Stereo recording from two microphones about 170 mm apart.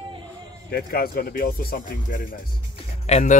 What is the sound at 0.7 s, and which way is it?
Speech, 65° left (ahead or behind).